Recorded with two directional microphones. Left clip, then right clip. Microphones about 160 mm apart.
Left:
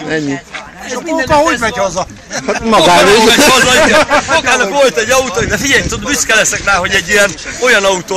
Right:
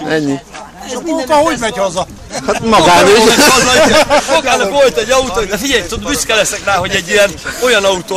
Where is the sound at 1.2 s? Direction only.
10° right (ahead or behind).